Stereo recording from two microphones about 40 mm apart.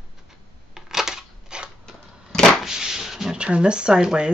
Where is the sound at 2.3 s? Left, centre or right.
Centre.